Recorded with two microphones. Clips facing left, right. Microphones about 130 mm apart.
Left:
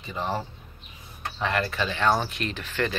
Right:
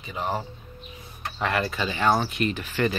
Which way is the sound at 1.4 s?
5° right (ahead or behind).